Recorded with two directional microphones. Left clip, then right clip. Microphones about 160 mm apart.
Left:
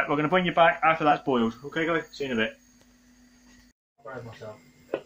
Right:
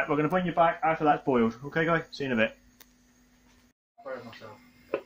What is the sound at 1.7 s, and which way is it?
Speech, 50° right (ahead or behind).